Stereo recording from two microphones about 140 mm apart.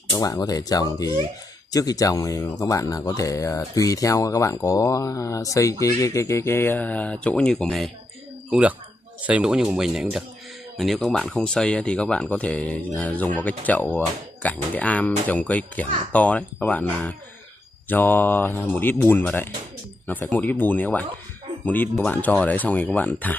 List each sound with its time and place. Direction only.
0.1 s speech: 25° left (ahead or behind); by 7.9 s 5° left (ahead or behind)
8.5 s speech: 10° right (ahead or behind); by 23.3 s 10° left (ahead or behind)